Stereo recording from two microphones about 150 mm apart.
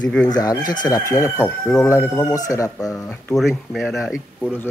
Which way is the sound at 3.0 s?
5° left (ahead or behind).